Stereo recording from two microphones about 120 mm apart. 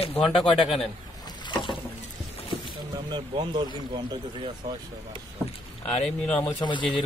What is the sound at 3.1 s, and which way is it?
Speech, 40° right (ahead or behind).